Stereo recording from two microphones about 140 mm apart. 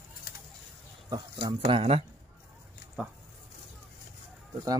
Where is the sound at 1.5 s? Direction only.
40° right (ahead or behind).